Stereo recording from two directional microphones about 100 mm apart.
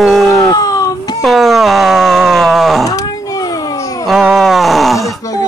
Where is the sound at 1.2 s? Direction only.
Centre (ahead or behind).